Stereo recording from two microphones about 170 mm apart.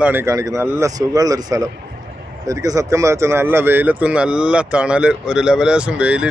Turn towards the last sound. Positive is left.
turn(degrees=-5)  # may be behind; listen again after turning